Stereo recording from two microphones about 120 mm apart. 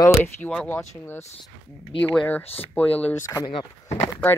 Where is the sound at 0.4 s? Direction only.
10° left (ahead or behind).